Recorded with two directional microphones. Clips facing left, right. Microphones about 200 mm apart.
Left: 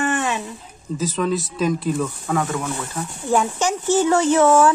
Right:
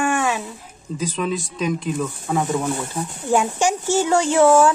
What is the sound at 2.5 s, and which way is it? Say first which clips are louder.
Speech: right 3 dB; 25° right (ahead or behind).